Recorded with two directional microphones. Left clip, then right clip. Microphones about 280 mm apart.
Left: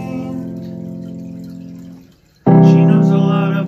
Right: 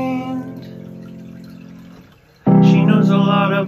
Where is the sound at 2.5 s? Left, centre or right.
Left.